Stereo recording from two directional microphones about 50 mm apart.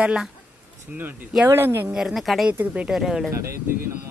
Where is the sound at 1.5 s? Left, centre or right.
Right.